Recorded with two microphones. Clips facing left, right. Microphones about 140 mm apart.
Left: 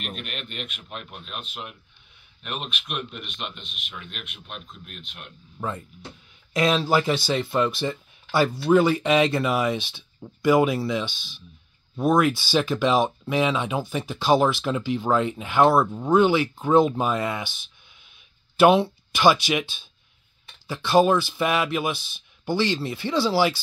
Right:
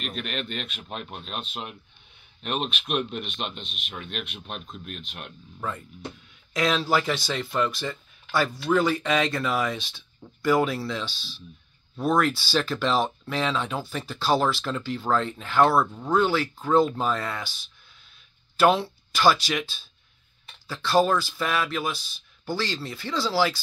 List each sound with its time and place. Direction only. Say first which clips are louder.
0.3 s speech: right 3 dB; 35° right (ahead or behind)
5.6 s speech: left 2 dB; 25° left (ahead or behind)
18.6 s speech: left 4 dB; 20° left (ahead or behind)